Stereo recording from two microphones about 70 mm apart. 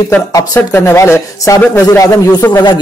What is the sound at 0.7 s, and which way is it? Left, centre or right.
Speech, left.